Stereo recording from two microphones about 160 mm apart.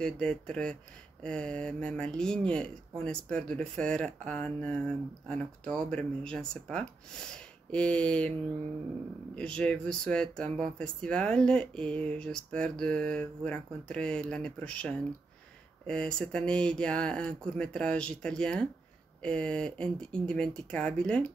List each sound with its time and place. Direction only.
0.0 s speech: 5° left (ahead or behind)